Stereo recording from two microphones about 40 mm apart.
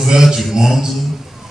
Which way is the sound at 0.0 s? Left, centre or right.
Centre.